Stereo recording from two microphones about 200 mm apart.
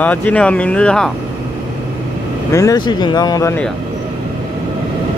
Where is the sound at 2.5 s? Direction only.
15° left (ahead or behind).